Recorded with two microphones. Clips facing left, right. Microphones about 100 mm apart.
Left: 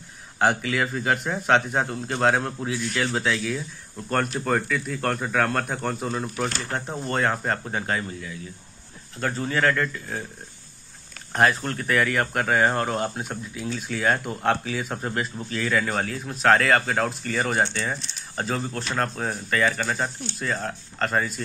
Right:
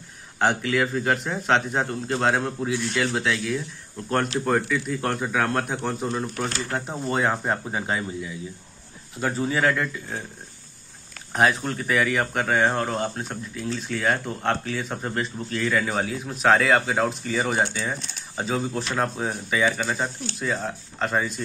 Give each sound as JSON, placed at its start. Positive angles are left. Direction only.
{"t": 0.4, "sound": "speech", "side_deg": 0}
{"t": 11.3, "sound": "speech", "side_deg": 0}